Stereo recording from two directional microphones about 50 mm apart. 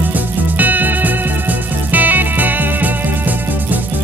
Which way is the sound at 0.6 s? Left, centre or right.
Right.